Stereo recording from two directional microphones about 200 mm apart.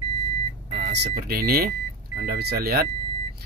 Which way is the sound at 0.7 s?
50° right (ahead or behind).